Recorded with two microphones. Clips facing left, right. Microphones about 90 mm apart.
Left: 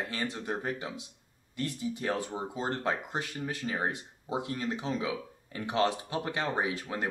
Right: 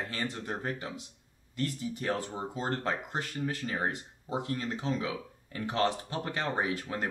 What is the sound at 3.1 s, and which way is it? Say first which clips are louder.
Speech: right 1 dB; 15° left (ahead or behind).